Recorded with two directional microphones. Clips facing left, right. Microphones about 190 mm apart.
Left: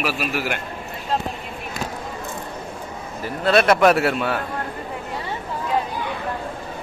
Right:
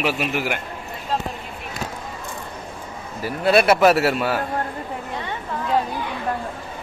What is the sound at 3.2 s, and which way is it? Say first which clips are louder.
A man's voice: right 1 dB; 10° right (ahead or behind).